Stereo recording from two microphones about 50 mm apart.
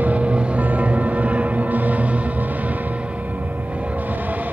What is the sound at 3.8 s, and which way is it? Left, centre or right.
Vehicle, right.